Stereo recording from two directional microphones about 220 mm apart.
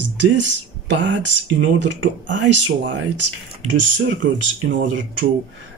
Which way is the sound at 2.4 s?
90° right.